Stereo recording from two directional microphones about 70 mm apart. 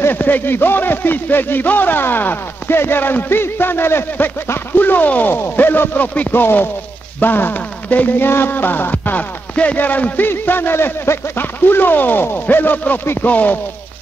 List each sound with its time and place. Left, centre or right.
0.0 s speech: left
13.0 s speech: left
13.3 s speech: left